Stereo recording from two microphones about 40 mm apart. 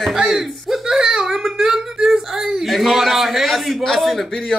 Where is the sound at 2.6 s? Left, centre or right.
Centre.